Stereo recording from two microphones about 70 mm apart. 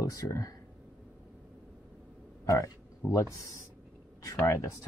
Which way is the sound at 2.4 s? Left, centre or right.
Left.